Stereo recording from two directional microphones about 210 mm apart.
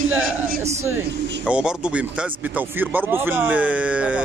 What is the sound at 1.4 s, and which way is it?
Speech, 5° right (ahead or behind).